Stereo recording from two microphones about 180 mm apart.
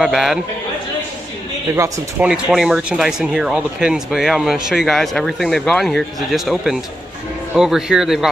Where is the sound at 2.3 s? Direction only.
5° right (ahead or behind).